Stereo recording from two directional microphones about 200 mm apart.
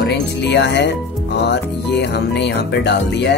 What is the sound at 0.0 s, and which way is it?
Speech, 55° left (ahead or behind).